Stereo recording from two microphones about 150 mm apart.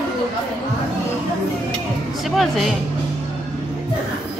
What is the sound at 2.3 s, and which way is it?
Speech, centre (ahead or behind).